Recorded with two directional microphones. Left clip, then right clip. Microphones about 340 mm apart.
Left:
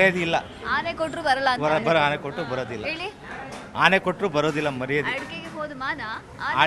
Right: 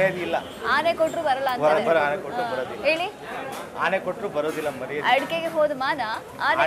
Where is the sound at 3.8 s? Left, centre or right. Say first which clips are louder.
Left 5 dB; left.